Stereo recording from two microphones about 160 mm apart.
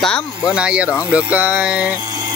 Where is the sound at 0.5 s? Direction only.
5° right (ahead or behind).